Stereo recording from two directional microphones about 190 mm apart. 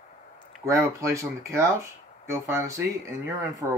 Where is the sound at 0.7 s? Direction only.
15° right (ahead or behind).